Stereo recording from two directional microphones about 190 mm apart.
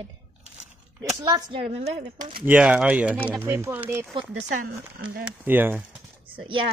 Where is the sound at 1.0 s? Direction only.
20° right (ahead or behind).